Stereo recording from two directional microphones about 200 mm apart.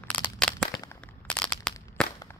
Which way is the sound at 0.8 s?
10° left (ahead or behind).